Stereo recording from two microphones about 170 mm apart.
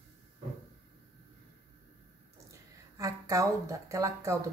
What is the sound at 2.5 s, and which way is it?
A woman's voice, 20° right (ahead or behind).